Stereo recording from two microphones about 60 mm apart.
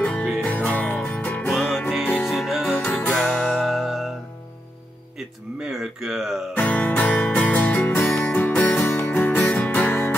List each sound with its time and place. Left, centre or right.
0.0 s music: left
1.5 s music: centre
2.8 s music: left
3.1 s music: centre
5.6 s a sound: centre
6.6 s music: left